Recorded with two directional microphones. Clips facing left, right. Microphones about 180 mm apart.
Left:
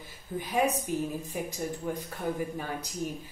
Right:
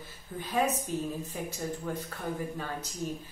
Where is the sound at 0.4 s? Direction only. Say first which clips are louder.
Left 1 dB; 10° left (ahead or behind).